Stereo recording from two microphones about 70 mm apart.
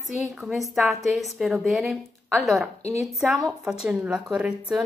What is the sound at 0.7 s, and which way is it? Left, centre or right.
A woman's voice, centre.